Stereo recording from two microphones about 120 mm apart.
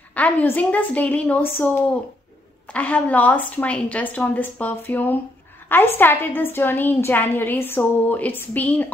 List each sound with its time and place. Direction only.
0.1 s a woman's voice: 15° left (ahead or behind)
2.7 s a woman's voice: 10° left (ahead or behind)